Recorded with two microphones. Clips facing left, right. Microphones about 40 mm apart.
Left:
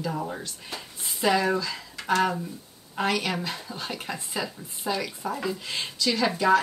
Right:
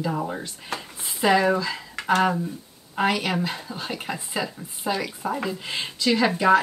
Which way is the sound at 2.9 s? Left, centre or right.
Centre.